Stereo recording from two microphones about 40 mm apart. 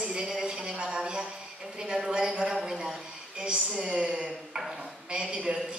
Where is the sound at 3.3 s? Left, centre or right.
Right.